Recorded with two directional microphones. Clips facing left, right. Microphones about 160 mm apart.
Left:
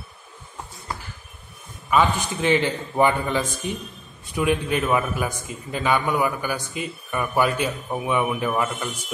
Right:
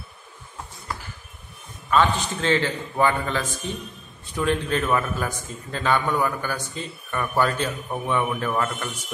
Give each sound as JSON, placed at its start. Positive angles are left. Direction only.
{"t": 1.9, "sound": "a man's voice", "side_deg": 10}